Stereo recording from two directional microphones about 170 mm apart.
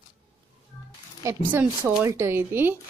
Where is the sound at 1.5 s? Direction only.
10° right (ahead or behind).